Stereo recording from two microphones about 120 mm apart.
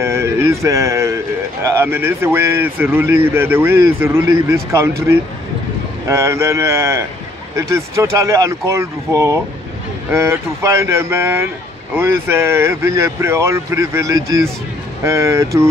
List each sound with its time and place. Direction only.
0.0 s a man's voice: 25° right (ahead or behind)